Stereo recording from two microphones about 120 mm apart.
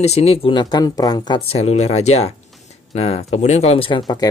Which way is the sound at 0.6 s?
35° left (ahead or behind).